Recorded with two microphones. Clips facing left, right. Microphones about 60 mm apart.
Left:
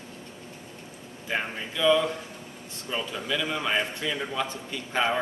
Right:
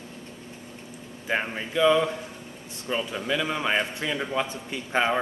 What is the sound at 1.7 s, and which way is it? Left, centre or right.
A man's voice, right.